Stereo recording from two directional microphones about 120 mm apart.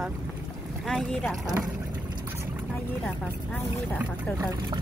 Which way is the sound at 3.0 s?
10° left (ahead or behind).